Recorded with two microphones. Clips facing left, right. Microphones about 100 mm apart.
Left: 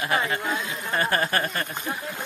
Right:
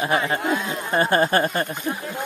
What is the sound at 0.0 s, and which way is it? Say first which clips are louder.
Speech: right 4 dB; 25° right (ahead or behind).